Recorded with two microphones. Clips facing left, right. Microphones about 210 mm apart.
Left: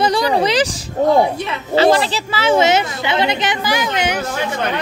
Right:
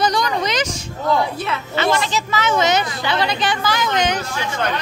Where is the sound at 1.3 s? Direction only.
15° left (ahead or behind).